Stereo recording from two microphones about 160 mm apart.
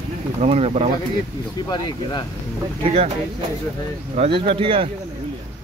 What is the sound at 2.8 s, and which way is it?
Speech, 40° right (ahead or behind).